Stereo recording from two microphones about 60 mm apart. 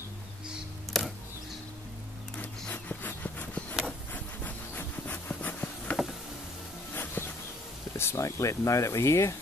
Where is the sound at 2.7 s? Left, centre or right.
Left.